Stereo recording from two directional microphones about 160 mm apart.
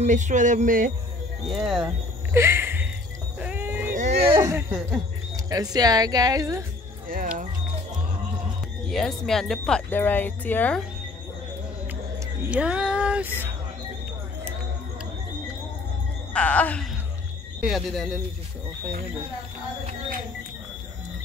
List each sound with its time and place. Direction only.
0.0 s a sound: 50° right (ahead or behind)
1.5 s speech: 5° right (ahead or behind)
2.3 s a sound: 15° right (ahead or behind)
4.3 s speech: 20° right (ahead or behind)
5.3 s speech: 25° right (ahead or behind)
7.1 s speech: 60° right (ahead or behind)
8.8 s speech: centre (ahead or behind)
12.4 s speech: 5° right (ahead or behind)
16.3 s speech: 10° left (ahead or behind)